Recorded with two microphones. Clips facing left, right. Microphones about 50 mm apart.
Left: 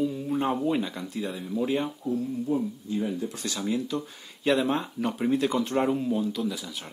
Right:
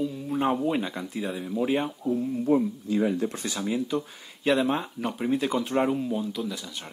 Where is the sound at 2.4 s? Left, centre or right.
Right.